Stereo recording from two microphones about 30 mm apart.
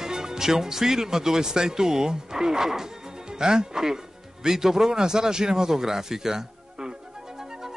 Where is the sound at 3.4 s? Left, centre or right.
Right.